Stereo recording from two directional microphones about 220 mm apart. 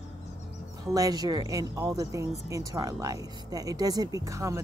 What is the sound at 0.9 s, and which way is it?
Speech, 15° right (ahead or behind).